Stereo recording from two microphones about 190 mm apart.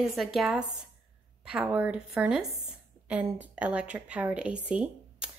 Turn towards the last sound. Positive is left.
turn(degrees=-5)  # may be behind; listen again after turning